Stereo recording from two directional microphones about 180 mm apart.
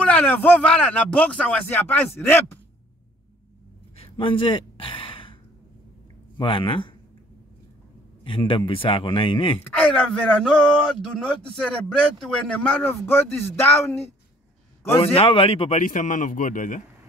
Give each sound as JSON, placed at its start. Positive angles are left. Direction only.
{"t": 0.0, "sound": "speech", "side_deg": 10}
{"t": 3.9, "sound": "sigh", "side_deg": 30}
{"t": 6.3, "sound": "speech", "side_deg": 30}
{"t": 8.2, "sound": "speech", "side_deg": 25}
{"t": 9.6, "sound": "speech", "side_deg": 5}
{"t": 15.0, "sound": "speech", "side_deg": 30}
{"t": 15.8, "sound": "speech", "side_deg": 45}